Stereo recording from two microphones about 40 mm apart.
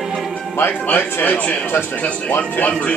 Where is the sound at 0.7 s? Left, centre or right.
Left.